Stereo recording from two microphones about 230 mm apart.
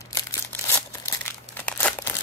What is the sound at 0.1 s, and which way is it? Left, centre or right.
Crumpling, centre.